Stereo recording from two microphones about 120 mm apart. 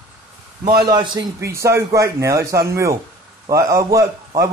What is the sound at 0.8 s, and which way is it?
Speech, 35° right (ahead or behind).